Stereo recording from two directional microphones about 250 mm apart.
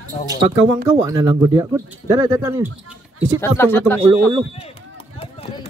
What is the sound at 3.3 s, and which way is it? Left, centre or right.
Speech, centre.